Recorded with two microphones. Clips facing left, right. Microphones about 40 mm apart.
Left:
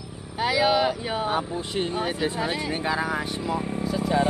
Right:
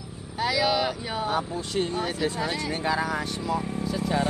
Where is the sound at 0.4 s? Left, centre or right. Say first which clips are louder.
Left 3 dB; centre.